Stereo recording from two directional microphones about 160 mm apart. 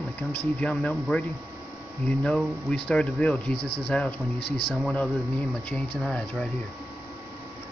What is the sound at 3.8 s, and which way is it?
Speech, 5° left (ahead or behind).